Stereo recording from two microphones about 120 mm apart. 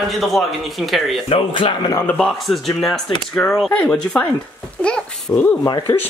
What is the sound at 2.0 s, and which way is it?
Speech, 5° left (ahead or behind).